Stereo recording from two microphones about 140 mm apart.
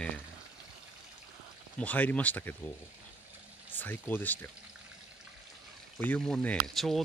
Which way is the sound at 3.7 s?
15° left (ahead or behind).